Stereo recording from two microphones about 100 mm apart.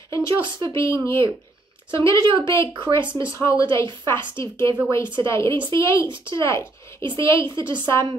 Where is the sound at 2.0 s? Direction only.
30° left (ahead or behind).